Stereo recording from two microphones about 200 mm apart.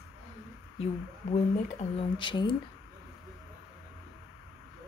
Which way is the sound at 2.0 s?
25° left (ahead or behind).